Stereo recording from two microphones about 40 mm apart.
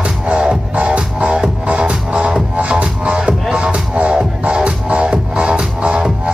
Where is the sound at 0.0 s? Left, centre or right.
Right.